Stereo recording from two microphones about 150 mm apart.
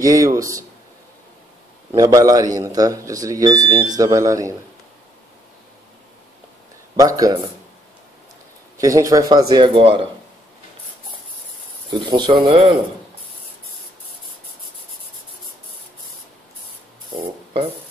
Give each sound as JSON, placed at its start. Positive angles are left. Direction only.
{"t": 0.0, "sound": "speech", "side_deg": -20}
{"t": 1.9, "sound": "speech", "side_deg": -25}
{"t": 7.0, "sound": "speech", "side_deg": -25}
{"t": 8.7, "sound": "speech", "side_deg": -20}
{"t": 11.9, "sound": "speech", "side_deg": -30}